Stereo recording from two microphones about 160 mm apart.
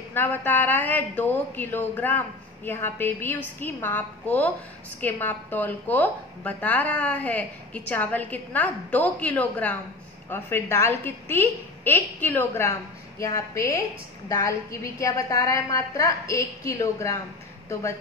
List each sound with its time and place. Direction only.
0.1 s a woman's voice: 10° left (ahead or behind)